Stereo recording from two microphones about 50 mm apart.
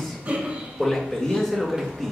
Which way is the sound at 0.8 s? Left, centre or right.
Centre.